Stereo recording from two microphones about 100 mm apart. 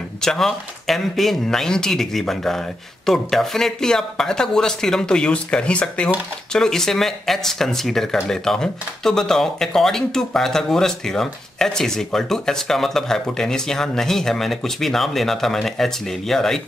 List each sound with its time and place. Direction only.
0.2 s speech: 5° left (ahead or behind)